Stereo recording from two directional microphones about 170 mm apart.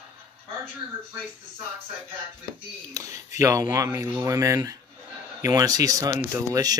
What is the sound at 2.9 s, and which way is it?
Speech, 20° right (ahead or behind).